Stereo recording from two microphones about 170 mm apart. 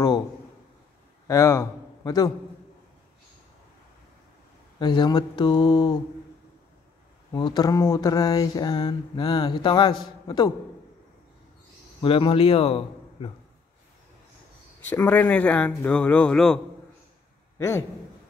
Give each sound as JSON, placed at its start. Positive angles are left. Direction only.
{"t": 1.2, "sound": "a man's voice", "side_deg": 20}
{"t": 4.7, "sound": "a sound", "side_deg": 25}
{"t": 7.3, "sound": "a sound", "side_deg": 25}
{"t": 12.0, "sound": "a man's voice", "side_deg": 35}
{"t": 14.9, "sound": "speech", "side_deg": 10}
{"t": 17.6, "sound": "a man's voice", "side_deg": 15}